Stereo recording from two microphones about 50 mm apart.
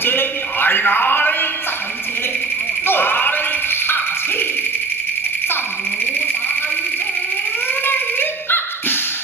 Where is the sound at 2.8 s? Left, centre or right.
Left.